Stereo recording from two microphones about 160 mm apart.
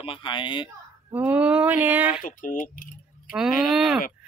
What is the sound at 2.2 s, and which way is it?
Speech, 55° left (ahead or behind).